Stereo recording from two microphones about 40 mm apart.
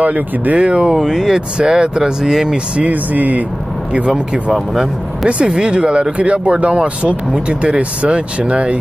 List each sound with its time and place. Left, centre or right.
0.0 s speech: right
0.9 s speech: centre
1.6 s speech: right
2.9 s speech: right
5.4 s speech: right